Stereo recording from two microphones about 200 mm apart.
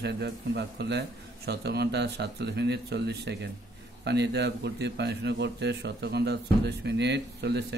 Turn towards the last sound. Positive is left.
turn(degrees=-55)  # may be behind; listen again after turning